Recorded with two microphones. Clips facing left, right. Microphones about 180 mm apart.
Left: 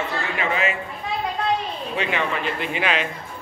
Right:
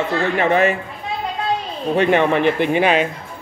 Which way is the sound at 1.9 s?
55° right (ahead or behind).